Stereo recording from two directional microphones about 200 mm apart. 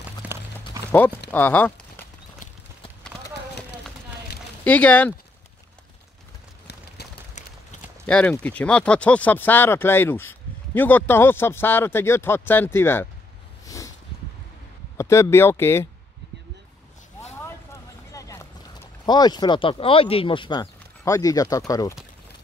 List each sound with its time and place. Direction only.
0.2 s clip-clop: 5° right (ahead or behind)
1.3 s speech: 10° left (ahead or behind)
4.6 s speech: 10° left (ahead or behind)
7.0 s a sound: 55° left (ahead or behind)
8.1 s speech: 5° left (ahead or behind)
13.7 s a sound: 15° left (ahead or behind)
15.0 s speech: 15° left (ahead or behind)
18.1 s boat: 15° left (ahead or behind)
19.0 s speech: 20° left (ahead or behind)